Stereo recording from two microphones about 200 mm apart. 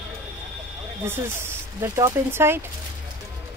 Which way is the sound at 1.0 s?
10° right (ahead or behind).